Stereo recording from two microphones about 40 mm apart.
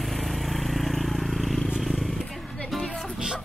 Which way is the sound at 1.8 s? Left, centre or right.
Centre.